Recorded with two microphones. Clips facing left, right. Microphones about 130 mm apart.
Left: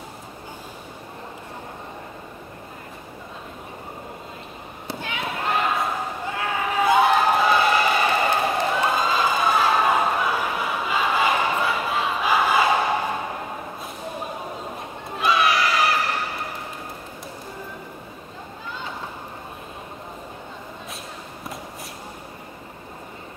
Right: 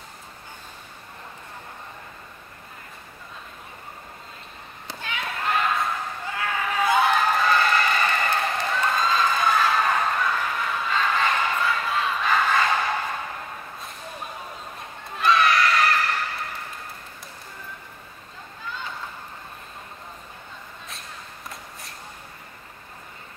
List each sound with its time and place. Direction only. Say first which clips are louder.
4.8 s basketball bounce: left 3 dB; 15° left (ahead or behind)
6.4 s a sound: left 2 dB; 15° left (ahead or behind)
15.1 s crowd: even; 5° left (ahead or behind)